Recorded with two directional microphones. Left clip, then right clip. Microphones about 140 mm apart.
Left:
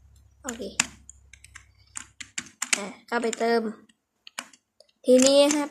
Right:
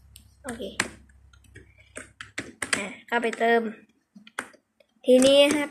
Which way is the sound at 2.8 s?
35° left (ahead or behind).